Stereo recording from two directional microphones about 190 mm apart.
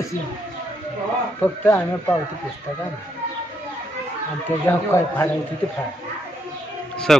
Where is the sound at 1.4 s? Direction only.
10° left (ahead or behind).